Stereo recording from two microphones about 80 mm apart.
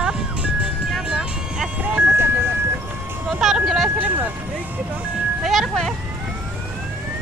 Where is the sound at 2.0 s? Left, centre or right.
Right.